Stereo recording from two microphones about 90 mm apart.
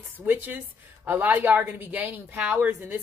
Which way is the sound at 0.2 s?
20° right (ahead or behind).